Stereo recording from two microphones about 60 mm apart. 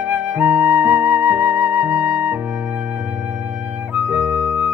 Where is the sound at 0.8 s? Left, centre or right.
Right.